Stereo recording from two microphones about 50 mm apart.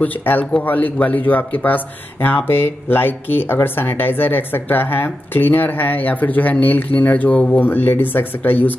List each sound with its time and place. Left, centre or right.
0.0 s speech: left